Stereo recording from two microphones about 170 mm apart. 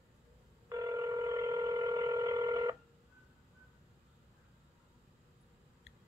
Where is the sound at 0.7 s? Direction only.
20° right (ahead or behind).